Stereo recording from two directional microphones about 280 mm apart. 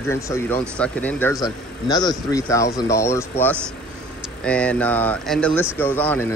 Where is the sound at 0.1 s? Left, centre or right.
Centre.